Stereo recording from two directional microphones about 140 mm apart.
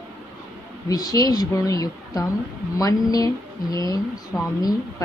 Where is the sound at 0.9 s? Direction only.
25° left (ahead or behind).